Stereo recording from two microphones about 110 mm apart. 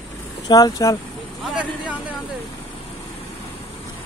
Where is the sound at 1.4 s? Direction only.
10° right (ahead or behind).